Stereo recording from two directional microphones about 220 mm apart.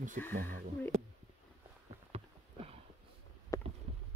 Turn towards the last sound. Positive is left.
turn(degrees=15)  # may be behind; listen again after turning